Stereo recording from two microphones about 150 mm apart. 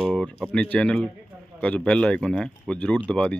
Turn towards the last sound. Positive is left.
turn(degrees=5)  # may be behind; listen again after turning